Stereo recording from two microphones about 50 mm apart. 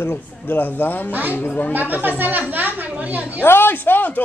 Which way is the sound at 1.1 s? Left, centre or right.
Right.